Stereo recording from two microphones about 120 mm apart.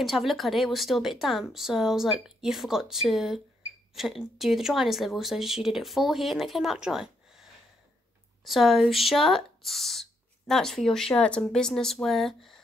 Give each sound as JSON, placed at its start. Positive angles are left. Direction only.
{"t": 0.0, "sound": "speech", "side_deg": 0}
{"t": 8.5, "sound": "speech", "side_deg": 0}